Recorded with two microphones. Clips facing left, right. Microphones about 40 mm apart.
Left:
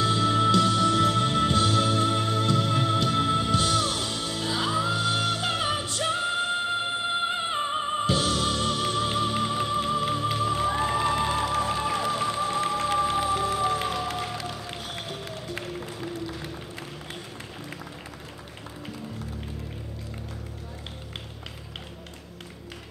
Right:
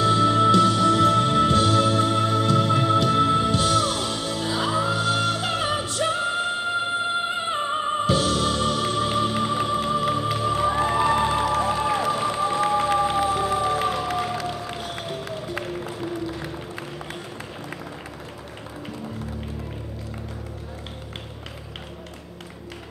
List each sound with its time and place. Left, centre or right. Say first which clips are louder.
0.0 s music: right 4 dB; centre
14.7 s music: right 4 dB; centre